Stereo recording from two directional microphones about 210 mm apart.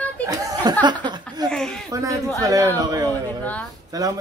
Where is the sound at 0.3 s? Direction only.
15° right (ahead or behind).